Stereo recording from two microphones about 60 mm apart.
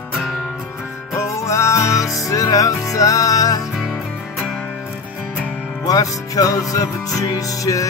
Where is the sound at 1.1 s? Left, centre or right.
Left.